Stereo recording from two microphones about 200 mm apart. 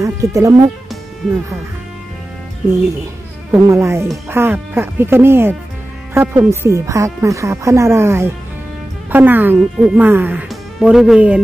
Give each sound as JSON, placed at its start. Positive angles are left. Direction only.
{"t": 0.0, "sound": "speech", "side_deg": -15}
{"t": 3.5, "sound": "speech", "side_deg": -15}